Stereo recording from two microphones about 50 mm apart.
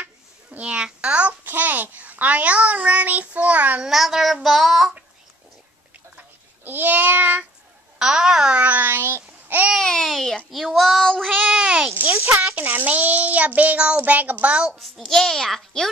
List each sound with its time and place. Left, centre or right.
0.0 s a sound: right
1.4 s child singing: right
3.8 s speech: centre
6.1 s a sound: right
8.0 s a child's voice: centre
8.5 s child singing: right
9.8 s babbling: centre
10.0 s a child's voice: centre
11.3 s a sound: centre
12.3 s child singing: right
14.8 s a child's voice: centre